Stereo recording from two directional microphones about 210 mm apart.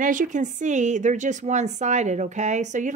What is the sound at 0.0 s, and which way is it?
A woman's voice, 40° right (ahead or behind).